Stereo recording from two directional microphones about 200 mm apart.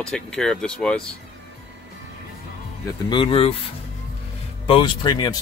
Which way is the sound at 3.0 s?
25° left (ahead or behind).